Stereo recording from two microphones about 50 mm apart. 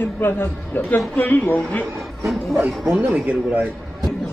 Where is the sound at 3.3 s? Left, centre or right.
Right.